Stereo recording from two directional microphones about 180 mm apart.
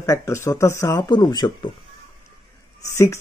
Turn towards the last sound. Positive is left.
turn(degrees=15)  # may be behind; listen again after turning